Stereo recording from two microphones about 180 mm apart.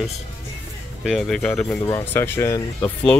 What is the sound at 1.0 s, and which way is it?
Speech, centre (ahead or behind).